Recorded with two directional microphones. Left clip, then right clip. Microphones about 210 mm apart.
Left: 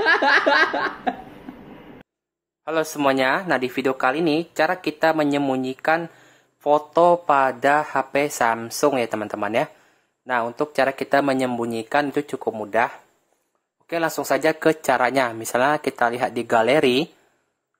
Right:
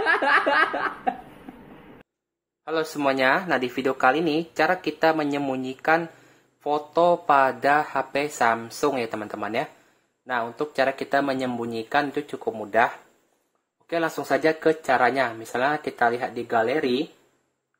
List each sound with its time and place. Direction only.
0.0 s snicker: 5° left (ahead or behind)
2.6 s speech: 20° left (ahead or behind); by 17.0 s 40° left (ahead or behind)